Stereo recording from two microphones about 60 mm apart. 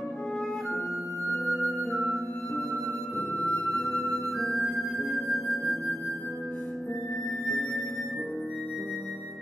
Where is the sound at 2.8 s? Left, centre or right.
Right.